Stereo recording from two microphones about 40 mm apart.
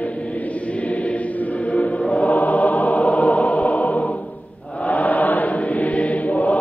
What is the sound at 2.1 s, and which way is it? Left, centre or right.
Choir, left.